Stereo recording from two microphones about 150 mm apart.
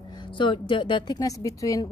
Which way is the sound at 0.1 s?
30° left (ahead or behind).